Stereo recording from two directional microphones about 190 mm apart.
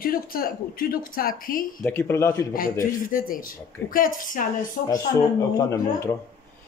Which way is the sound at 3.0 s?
45° left (ahead or behind).